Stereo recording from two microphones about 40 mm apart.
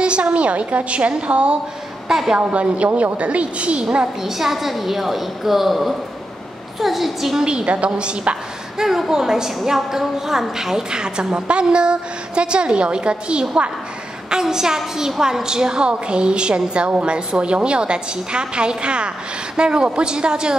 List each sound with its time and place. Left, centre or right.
0.0 s a woman's voice: right
2.0 s a woman's voice: centre
2.3 s a woman's voice: right
4.2 s a woman's voice: centre
7.6 s a woman's voice: right
8.7 s a woman's voice: centre